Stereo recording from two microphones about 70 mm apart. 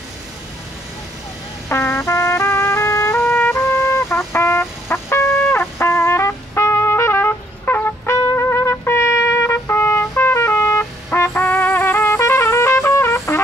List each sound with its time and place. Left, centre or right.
1.7 s music: left
8.4 s trumpet: left